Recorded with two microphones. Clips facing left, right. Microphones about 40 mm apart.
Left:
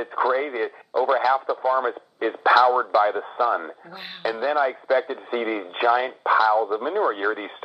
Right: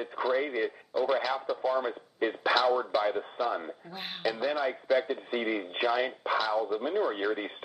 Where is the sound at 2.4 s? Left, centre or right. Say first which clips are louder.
Left 10 dB; left.